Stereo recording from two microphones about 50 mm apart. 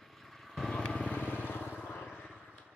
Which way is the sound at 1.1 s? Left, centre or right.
Left.